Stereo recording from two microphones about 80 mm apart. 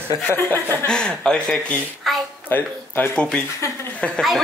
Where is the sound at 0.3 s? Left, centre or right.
Left.